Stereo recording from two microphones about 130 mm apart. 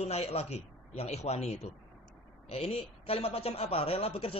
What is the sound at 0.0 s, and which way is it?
A man's voice, 55° left (ahead or behind).